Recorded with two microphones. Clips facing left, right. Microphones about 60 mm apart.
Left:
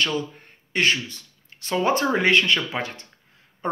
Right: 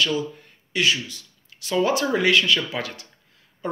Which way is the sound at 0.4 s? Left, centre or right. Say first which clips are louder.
Left 1 dB; left.